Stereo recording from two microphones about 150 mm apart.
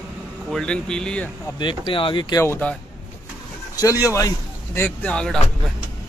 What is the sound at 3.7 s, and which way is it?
Speech, 25° left (ahead or behind).